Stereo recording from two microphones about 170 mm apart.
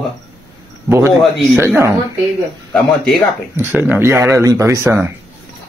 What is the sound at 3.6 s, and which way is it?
A man's voice, 10° right (ahead or behind).